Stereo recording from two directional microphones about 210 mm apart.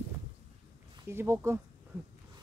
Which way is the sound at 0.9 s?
10° right (ahead or behind).